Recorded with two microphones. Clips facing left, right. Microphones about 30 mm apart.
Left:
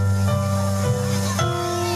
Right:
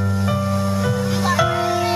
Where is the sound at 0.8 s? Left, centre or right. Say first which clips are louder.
Right 4 dB; right.